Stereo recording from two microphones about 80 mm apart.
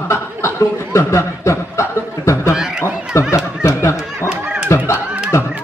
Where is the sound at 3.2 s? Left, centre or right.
Left.